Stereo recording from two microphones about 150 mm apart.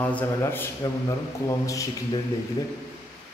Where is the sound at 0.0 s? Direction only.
15° left (ahead or behind).